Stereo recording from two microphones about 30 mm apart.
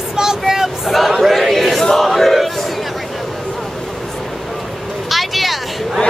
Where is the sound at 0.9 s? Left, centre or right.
Centre.